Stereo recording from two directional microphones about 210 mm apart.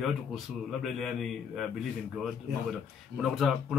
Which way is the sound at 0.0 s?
Centre (ahead or behind).